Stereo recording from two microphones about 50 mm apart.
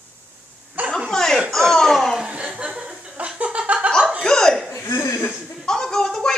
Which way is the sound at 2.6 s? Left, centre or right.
Right.